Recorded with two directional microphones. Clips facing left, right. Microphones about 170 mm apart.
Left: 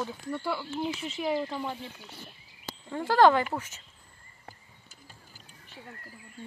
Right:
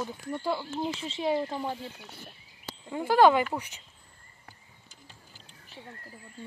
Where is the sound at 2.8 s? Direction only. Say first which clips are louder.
Even; 15° right (ahead or behind).